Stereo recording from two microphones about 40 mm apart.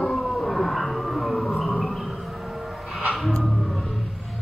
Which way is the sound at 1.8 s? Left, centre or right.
Centre.